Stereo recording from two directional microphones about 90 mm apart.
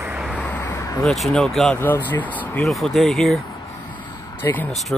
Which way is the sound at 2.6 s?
Centre (ahead or behind).